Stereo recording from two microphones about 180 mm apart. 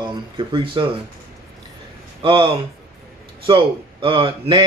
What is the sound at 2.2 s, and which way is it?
Speech, 30° right (ahead or behind).